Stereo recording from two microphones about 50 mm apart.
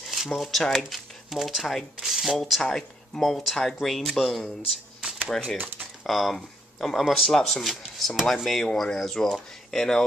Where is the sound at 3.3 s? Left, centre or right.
Centre.